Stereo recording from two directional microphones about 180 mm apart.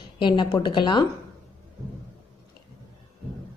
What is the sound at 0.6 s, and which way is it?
Speech, 25° left (ahead or behind).